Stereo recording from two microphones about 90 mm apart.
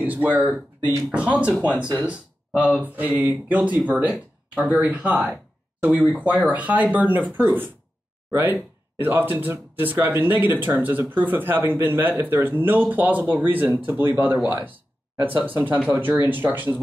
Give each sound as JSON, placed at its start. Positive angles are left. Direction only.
{"t": 0.0, "sound": "speech", "side_deg": -20}